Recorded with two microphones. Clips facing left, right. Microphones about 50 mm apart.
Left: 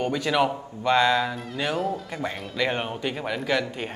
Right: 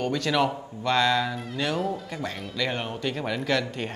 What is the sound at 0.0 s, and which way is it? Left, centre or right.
A man's voice, centre.